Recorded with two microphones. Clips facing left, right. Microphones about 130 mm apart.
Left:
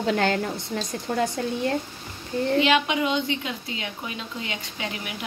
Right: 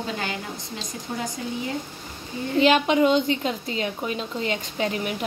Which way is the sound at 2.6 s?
40° right (ahead or behind).